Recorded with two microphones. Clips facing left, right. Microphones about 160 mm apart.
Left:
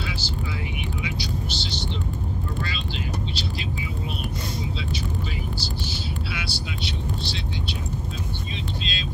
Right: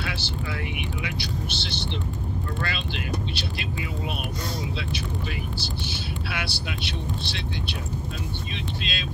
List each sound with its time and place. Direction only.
0.0 s vehicle: 60° right (ahead or behind)
5.6 s vehicle: 60° right (ahead or behind)